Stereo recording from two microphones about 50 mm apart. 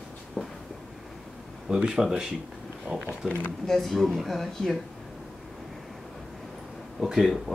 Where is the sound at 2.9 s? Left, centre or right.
Right.